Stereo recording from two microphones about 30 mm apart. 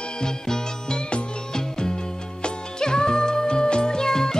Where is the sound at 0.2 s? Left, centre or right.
Left.